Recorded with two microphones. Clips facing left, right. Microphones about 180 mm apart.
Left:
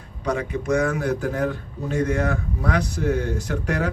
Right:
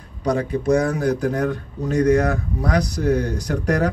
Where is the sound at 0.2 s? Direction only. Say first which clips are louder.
Right 4 dB; 35° right (ahead or behind).